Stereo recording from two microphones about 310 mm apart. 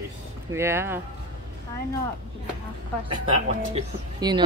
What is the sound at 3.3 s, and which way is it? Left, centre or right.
Speech, centre.